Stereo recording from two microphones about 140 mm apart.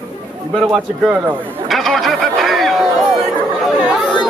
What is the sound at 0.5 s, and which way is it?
Speech, centre (ahead or behind).